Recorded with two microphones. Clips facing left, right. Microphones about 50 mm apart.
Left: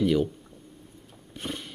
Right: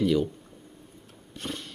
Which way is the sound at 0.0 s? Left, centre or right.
Centre.